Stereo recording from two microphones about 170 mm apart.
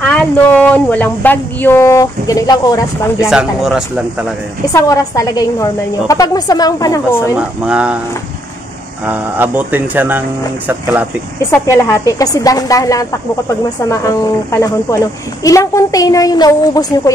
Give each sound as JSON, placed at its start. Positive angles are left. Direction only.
{"t": 0.0, "sound": "speech", "side_deg": 5}
{"t": 3.3, "sound": "speech", "side_deg": -5}
{"t": 4.7, "sound": "a woman's voice", "side_deg": 20}
{"t": 7.3, "sound": "speech", "side_deg": -5}
{"t": 9.0, "sound": "speech", "side_deg": -10}
{"t": 11.6, "sound": "a woman's voice", "side_deg": 15}